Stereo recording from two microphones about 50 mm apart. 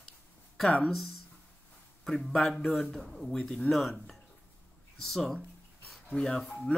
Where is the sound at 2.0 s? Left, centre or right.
Centre.